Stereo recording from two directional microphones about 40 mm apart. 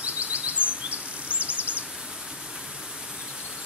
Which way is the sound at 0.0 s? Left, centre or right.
Right.